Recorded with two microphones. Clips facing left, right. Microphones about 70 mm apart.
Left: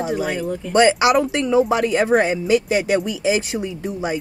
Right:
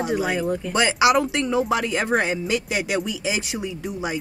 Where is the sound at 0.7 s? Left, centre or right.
Left.